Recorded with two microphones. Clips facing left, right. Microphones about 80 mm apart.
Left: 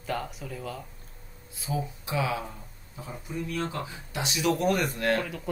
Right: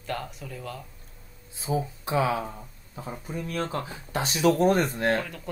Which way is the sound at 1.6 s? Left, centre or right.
Right.